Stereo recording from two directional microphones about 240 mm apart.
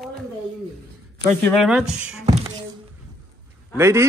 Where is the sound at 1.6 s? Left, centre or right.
Centre.